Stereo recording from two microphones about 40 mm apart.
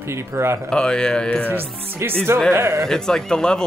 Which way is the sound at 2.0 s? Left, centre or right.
Right.